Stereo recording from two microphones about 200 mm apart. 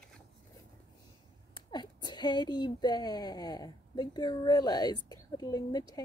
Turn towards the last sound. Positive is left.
turn(degrees=20)  # may be behind; listen again after turning